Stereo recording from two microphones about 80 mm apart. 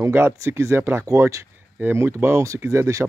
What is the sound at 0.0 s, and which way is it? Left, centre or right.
Speech, right.